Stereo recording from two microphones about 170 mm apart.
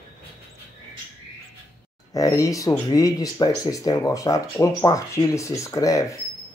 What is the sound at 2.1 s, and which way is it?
Speech, 20° left (ahead or behind).